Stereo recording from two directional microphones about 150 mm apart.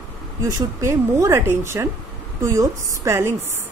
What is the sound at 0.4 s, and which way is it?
A woman's voice, 20° right (ahead or behind).